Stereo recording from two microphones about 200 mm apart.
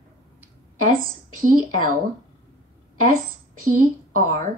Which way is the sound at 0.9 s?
45° right (ahead or behind).